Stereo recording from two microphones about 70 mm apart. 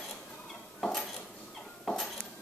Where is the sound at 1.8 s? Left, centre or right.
Centre.